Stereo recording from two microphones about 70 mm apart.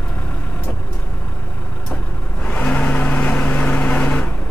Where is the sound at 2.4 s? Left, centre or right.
Centre.